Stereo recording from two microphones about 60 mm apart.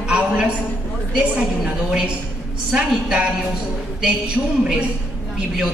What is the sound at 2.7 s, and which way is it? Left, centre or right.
Speech, centre.